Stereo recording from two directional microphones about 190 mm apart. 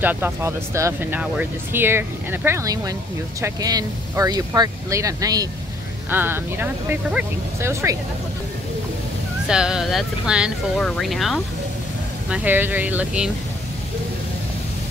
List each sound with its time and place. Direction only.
0.0 s speech: 10° right (ahead or behind)
9.5 s speech: 5° right (ahead or behind)
12.3 s speech: 10° right (ahead or behind)